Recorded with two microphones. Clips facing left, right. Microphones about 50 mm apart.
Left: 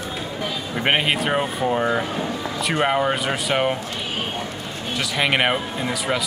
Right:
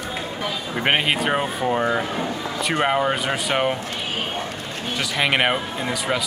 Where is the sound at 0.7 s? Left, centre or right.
Centre.